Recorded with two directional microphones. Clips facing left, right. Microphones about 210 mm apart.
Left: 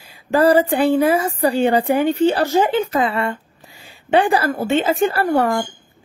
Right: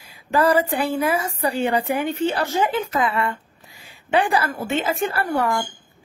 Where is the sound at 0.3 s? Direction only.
30° left (ahead or behind).